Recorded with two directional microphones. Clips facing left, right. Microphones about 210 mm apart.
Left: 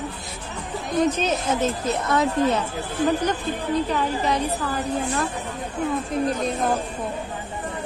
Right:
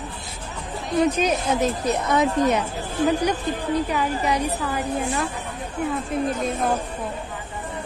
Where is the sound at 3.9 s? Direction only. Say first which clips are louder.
Even; 10° right (ahead or behind).